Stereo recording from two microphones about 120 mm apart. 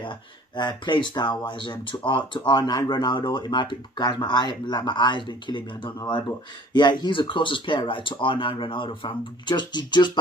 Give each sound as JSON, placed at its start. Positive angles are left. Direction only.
{"t": 0.6, "sound": "speech", "side_deg": 40}